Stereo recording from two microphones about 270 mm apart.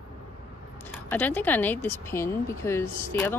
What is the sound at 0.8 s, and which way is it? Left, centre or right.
Speech, centre.